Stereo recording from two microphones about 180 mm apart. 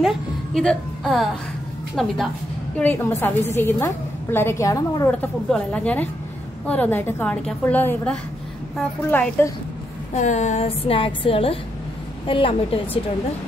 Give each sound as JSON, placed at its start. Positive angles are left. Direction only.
{"t": 0.6, "sound": "a woman's voice", "side_deg": 0}
{"t": 10.1, "sound": "a woman's voice", "side_deg": 40}